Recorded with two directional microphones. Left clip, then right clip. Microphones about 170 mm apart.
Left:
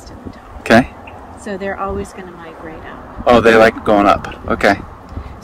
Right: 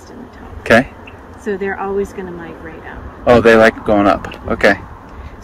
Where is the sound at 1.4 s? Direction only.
25° left (ahead or behind).